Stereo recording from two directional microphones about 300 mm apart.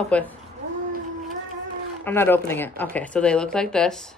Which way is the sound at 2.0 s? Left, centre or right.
Centre.